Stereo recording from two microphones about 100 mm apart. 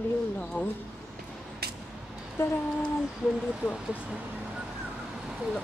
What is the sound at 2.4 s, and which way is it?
Speech, 25° left (ahead or behind).